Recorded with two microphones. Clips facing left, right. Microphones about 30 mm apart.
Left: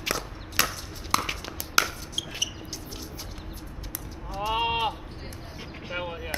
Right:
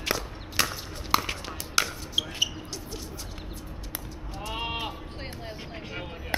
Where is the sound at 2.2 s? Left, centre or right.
Right.